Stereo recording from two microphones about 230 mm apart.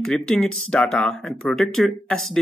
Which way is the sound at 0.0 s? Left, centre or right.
Centre.